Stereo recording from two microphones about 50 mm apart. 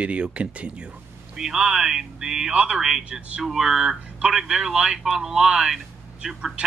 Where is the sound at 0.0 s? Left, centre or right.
Right.